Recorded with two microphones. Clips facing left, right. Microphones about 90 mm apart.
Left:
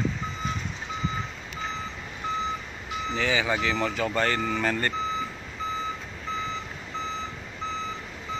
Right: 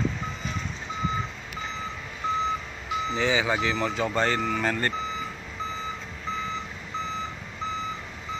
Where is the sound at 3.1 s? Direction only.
10° right (ahead or behind).